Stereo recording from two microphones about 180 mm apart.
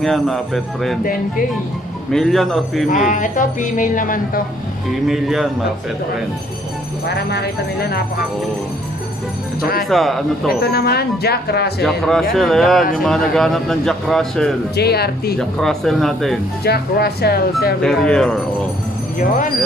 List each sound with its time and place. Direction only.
0.0 s speech: centre (ahead or behind)
2.1 s speech: centre (ahead or behind)
2.9 s speech: 45° left (ahead or behind)
5.0 s speech: centre (ahead or behind)
7.2 s speech: 65° left (ahead or behind)
9.6 s speech: 55° left (ahead or behind)
9.8 s speech: centre (ahead or behind)
10.6 s speech: 60° left (ahead or behind)
11.8 s speech: centre (ahead or behind)
14.8 s speech: 60° left (ahead or behind)
15.3 s speech: centre (ahead or behind)
16.6 s speech: 60° left (ahead or behind)
17.8 s speech: 5° left (ahead or behind)
19.1 s speech: 50° left (ahead or behind)